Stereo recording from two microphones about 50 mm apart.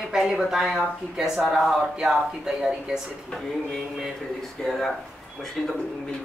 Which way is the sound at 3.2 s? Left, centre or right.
Centre.